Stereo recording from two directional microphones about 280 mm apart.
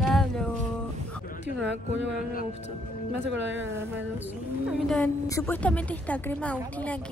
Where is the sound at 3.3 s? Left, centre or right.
Right.